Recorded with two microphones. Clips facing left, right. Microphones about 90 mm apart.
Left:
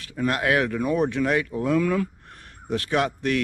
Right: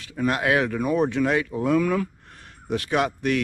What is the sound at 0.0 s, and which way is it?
Speech, 20° right (ahead or behind).